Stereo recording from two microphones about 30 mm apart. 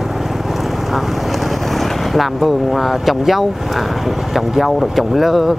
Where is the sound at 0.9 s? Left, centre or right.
Centre.